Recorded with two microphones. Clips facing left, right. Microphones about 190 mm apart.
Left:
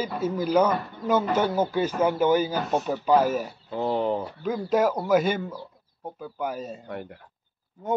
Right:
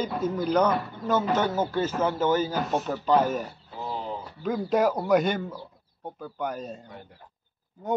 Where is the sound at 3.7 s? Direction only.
65° left (ahead or behind).